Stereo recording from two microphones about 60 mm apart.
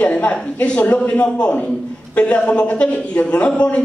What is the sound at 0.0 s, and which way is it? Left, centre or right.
A man's voice, left.